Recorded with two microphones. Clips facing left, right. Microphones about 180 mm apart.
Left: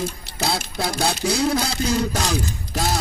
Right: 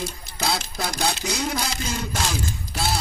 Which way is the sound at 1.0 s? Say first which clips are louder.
Left 5 dB; 35° left (ahead or behind).